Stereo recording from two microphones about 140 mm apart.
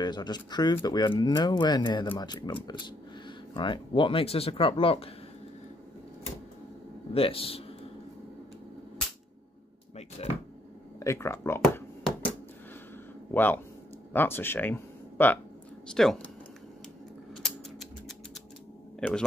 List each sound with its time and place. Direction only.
0.0 s speech: 30° left (ahead or behind)
7.2 s a man's voice: 40° left (ahead or behind)
10.2 s a man's voice: 45° left (ahead or behind)
11.0 s speech: 20° left (ahead or behind)
13.3 s speech: 15° left (ahead or behind)
17.4 s a sound: centre (ahead or behind)
18.9 s speech: 5° left (ahead or behind)